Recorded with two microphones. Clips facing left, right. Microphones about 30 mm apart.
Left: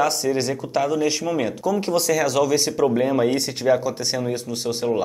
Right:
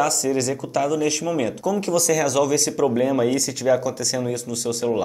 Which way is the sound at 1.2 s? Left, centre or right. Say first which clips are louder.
Even; centre.